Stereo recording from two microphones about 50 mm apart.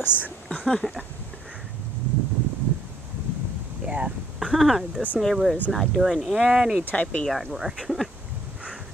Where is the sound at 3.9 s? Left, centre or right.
Right.